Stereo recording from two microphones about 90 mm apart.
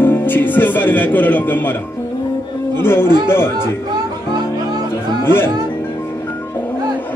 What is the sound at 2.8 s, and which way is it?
Speech, 25° left (ahead or behind).